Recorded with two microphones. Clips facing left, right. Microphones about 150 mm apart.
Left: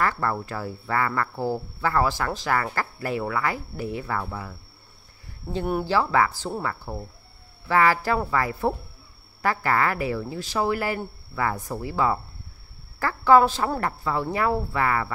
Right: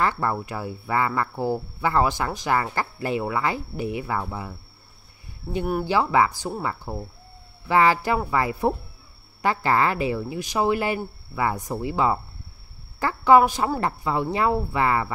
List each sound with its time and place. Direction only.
0.0 s speech: 20° right (ahead or behind)
5.9 s a woman's voice: 20° right (ahead or behind)